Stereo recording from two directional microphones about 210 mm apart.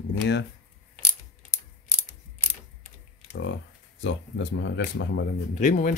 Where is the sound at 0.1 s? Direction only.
55° left (ahead or behind).